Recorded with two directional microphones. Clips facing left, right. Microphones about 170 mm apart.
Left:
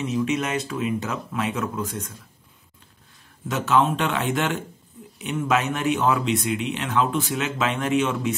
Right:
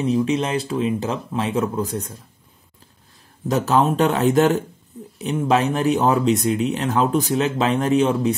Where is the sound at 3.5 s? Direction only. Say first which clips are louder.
Right 3 dB; 40° right (ahead or behind).